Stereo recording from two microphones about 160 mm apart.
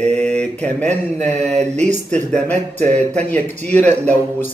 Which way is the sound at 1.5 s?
45° right (ahead or behind).